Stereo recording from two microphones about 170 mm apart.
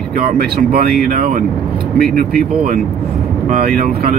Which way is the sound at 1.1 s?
50° right (ahead or behind).